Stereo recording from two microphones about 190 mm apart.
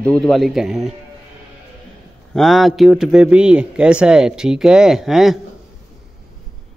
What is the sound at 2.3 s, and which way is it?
Speech, centre (ahead or behind).